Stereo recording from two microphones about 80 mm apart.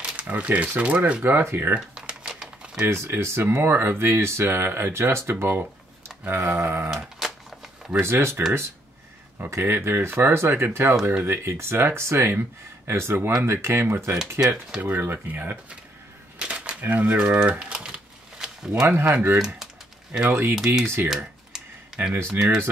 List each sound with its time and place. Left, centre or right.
0.0 s speech: centre
1.7 s typing: centre
2.8 s speech: right
6.9 s typewriter: centre
8.0 s speech: right
9.4 s speech: right
16.3 s typewriter: centre
18.9 s speech: right
19.3 s speech: centre
20.1 s speech: right
20.5 s speech: centre
20.8 s speech: right
21.5 s computer keyboard: centre